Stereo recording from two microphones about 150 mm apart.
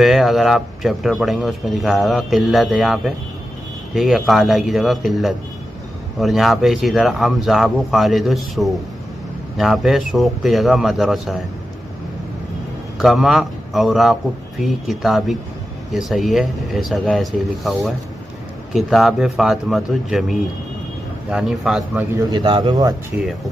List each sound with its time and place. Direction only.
0.0 s a man's voice: centre (ahead or behind)
13.0 s a man's voice: centre (ahead or behind)
22.3 s a man's voice: 30° right (ahead or behind)